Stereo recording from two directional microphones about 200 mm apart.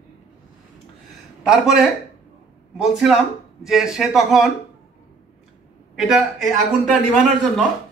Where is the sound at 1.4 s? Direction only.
5° right (ahead or behind).